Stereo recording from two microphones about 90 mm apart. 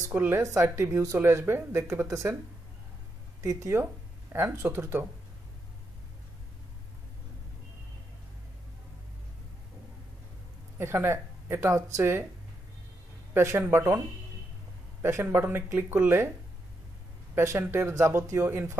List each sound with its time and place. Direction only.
0.1 s speech: 20° right (ahead or behind)
0.4 s speech: 30° right (ahead or behind)
3.3 s speech: 35° right (ahead or behind)
10.8 s speech: 25° right (ahead or behind)
13.3 s speech: 25° right (ahead or behind)
17.4 s speech: 30° right (ahead or behind)